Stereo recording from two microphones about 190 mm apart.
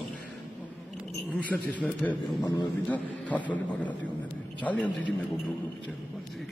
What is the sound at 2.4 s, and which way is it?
Speech, 20° left (ahead or behind).